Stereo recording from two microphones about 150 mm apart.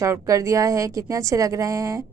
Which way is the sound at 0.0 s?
20° right (ahead or behind).